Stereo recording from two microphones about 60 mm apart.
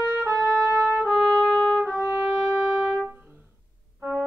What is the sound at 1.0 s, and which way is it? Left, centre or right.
Trumpet, centre.